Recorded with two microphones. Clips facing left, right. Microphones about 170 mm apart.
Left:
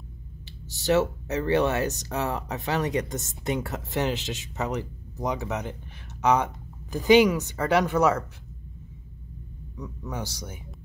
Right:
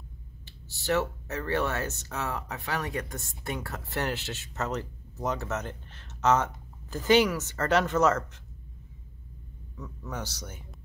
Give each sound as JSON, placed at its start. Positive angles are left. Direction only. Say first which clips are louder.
{"t": 0.8, "sound": "speech", "louder": "left 5 dB", "side_deg": 20}
{"t": 1.9, "sound": "speech", "louder": "left 7 dB", "side_deg": 40}
{"t": 2.1, "sound": "speech", "louder": "left 4 dB", "side_deg": 15}
{"t": 9.8, "sound": "speech", "louder": "left 3 dB", "side_deg": 15}